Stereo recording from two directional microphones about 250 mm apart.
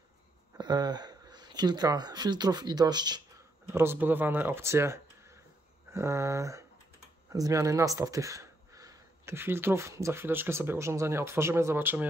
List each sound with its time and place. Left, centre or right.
0.6 s speech: centre